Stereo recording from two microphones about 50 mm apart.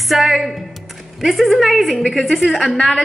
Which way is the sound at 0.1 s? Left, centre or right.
Centre.